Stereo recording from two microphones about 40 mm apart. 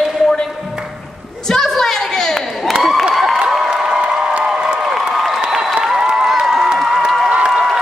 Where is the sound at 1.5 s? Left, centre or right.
Centre.